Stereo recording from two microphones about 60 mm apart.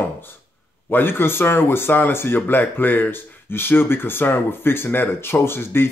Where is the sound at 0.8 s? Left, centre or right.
Left.